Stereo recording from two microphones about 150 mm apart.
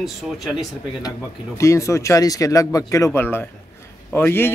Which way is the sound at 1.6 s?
20° left (ahead or behind).